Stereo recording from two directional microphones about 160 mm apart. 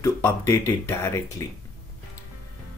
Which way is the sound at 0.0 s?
15° left (ahead or behind).